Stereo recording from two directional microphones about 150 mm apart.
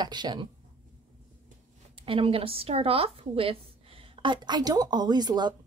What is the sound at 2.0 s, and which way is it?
A woman's voice, 35° right (ahead or behind).